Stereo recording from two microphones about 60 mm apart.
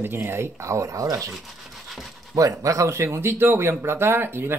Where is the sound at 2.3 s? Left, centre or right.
Right.